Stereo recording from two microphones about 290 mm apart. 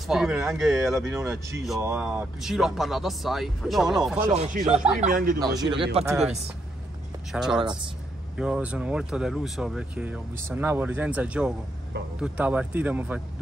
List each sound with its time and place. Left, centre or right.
0.0 s speech: centre
4.3 s speech: right
5.6 s speech: centre
6.0 s speech: centre
7.3 s speech: centre